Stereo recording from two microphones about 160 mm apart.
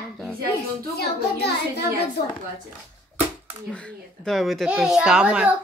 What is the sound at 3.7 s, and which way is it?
A child's voice, 5° left (ahead or behind).